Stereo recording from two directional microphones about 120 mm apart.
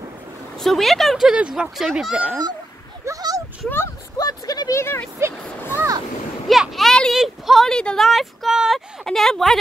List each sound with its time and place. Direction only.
0.6 s speech: centre (ahead or behind)
3.1 s a sound: 30° right (ahead or behind)
3.6 s a sound: 20° left (ahead or behind)
4.3 s speech: 30° left (ahead or behind)
5.8 s speech: 30° right (ahead or behind)
6.5 s speech: centre (ahead or behind)